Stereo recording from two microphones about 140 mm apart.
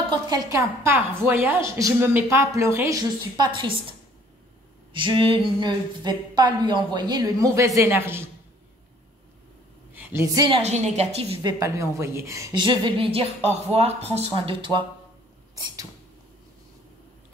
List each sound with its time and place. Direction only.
0.1 s a woman's voice: 30° right (ahead or behind)
4.9 s speech: 35° right (ahead or behind); by 8.3 s 15° right (ahead or behind)
9.9 s a sound: 15° right (ahead or behind)
10.3 s speech: 35° right (ahead or behind)
10.6 s a woman's voice: 55° right (ahead or behind)
11.4 s a woman's voice: 20° right (ahead or behind)
12.5 s speech: 35° right (ahead or behind)
15.5 s a sound: 25° right (ahead or behind)